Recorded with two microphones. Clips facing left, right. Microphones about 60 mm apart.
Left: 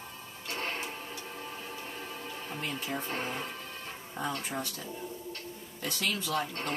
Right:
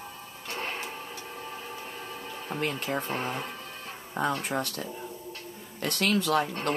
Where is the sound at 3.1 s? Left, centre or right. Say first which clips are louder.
Right 3 dB; centre.